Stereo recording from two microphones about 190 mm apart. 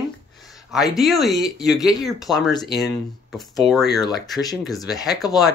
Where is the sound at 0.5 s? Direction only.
Centre (ahead or behind).